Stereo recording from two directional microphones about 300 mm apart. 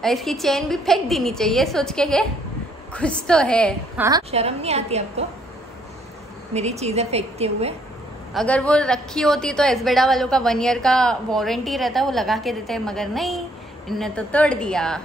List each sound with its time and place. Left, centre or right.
0.0 s a woman's voice: centre
4.0 s a woman's voice: centre
6.5 s a woman's voice: right
8.3 s a woman's voice: centre